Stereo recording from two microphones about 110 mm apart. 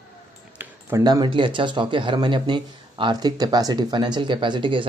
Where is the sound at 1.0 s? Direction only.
45° right (ahead or behind).